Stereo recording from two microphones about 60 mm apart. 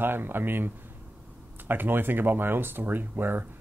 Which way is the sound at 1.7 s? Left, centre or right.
Right.